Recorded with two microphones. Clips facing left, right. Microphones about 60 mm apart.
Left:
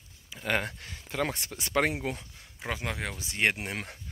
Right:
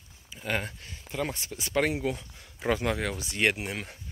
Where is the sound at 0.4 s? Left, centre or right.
Left.